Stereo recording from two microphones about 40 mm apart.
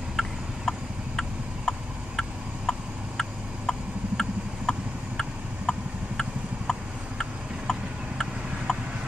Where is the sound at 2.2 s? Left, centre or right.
Centre.